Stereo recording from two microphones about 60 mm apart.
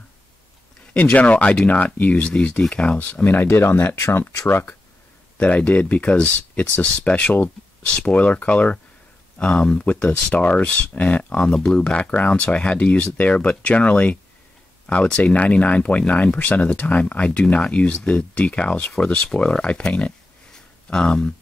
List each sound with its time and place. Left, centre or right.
1.0 s speech: left
3.3 s speech: left
5.4 s speech: left
20.5 s a sound: centre